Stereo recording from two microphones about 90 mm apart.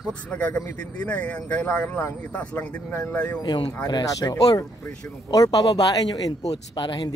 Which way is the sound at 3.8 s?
45° left (ahead or behind).